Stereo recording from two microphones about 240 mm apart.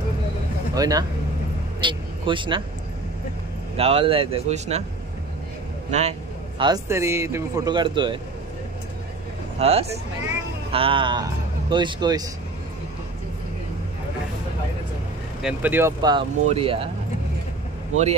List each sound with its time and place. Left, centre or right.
0.7 s speech: centre
3.7 s speech: right
5.9 s speech: right
6.6 s speech: centre
9.6 s a man's voice: right
15.4 s speech: centre; by 16.9 s right